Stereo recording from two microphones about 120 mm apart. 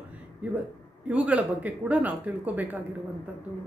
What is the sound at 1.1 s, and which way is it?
Speech, 10° right (ahead or behind).